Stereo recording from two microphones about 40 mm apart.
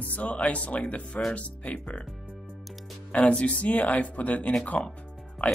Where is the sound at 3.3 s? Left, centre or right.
Left.